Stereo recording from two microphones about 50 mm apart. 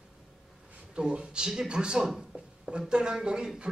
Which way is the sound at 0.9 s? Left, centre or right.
Centre.